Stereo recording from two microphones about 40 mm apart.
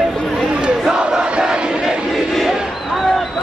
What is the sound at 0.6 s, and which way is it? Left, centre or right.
Crowd, right.